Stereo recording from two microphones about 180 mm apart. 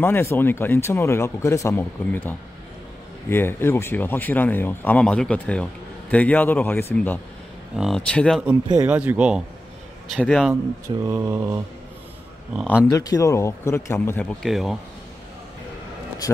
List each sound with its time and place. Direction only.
0.0 s speech: 10° left (ahead or behind)
7.7 s speech: centre (ahead or behind)
11.1 s mantra: 20° right (ahead or behind)
12.9 s speech: 20° left (ahead or behind); by 14.8 s centre (ahead or behind)